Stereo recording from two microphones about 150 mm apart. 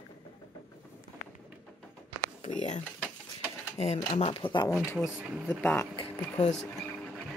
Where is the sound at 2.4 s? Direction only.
50° left (ahead or behind).